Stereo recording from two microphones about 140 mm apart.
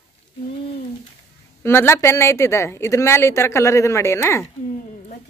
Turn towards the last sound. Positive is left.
turn(degrees=20)  # may be behind; listen again after turning